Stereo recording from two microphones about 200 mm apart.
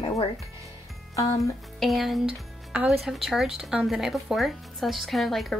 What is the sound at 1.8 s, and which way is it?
A woman's voice, centre (ahead or behind).